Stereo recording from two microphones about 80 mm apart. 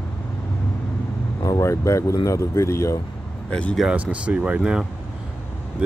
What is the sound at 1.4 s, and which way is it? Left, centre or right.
Speech, left.